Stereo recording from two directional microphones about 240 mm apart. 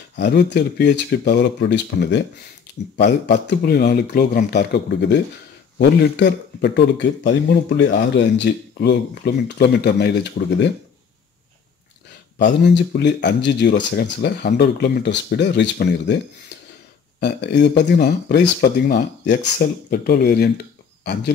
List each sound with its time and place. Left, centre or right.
0.1 s a man's voice: left
12.4 s a man's voice: left
17.2 s a man's voice: left